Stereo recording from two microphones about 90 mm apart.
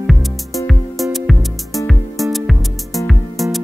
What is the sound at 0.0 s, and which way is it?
Music, centre (ahead or behind).